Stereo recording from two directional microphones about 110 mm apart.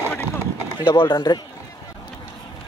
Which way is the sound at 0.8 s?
50° left (ahead or behind).